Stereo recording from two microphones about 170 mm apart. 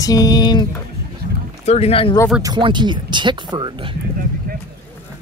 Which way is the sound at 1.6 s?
40° left (ahead or behind).